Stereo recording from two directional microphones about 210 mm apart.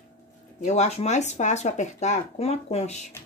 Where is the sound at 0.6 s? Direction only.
35° left (ahead or behind).